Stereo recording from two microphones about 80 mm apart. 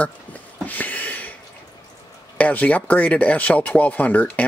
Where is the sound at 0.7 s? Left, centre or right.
Left.